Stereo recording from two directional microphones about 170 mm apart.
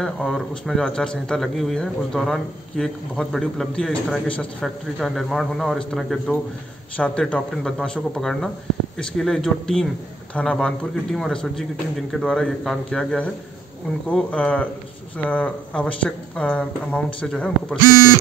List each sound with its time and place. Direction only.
0.0 s a man's voice: 5° left (ahead or behind)
17.8 s speech: 20° left (ahead or behind)